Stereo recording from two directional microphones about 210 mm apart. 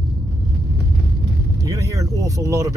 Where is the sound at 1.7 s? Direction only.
15° right (ahead or behind).